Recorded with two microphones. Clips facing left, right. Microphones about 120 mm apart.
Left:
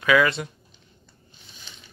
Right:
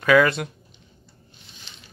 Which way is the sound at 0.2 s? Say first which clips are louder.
Right 2 dB; 45° right (ahead or behind).